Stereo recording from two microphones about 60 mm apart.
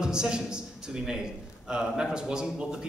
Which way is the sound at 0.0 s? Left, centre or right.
Centre.